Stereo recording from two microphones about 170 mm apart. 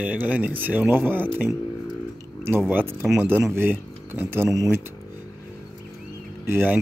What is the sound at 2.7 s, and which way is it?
Speech, 10° right (ahead or behind).